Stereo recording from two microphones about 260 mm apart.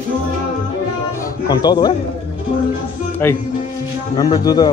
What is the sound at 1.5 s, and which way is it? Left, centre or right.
Speech, centre.